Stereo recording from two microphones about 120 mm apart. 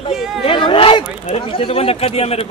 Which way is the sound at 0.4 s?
45° left (ahead or behind).